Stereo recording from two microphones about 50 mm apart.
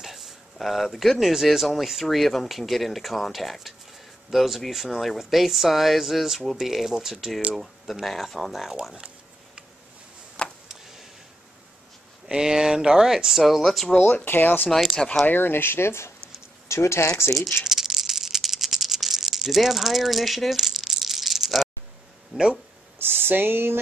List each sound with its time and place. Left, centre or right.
0.0 s speech: centre
10.4 s a sound: centre
10.7 s a sound: centre
12.3 s speech: centre
13.4 s speech: centre
13.9 s speech: left
16.6 s speech: left
17.6 s rattle: centre
22.3 s speech: centre
22.9 s speech: right